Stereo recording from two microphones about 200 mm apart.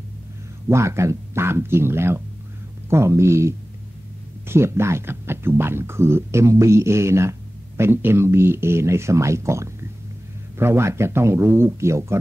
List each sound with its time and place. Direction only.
0.7 s speech: 15° right (ahead or behind)